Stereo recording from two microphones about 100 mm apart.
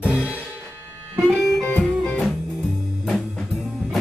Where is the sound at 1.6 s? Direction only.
Centre (ahead or behind).